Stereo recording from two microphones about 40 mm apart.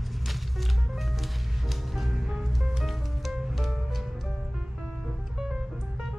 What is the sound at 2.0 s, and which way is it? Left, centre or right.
Music, centre.